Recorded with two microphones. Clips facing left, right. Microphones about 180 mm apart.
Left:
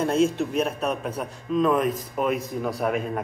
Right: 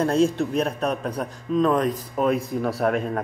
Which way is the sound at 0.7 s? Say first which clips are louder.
Right 2 dB; 5° left (ahead or behind).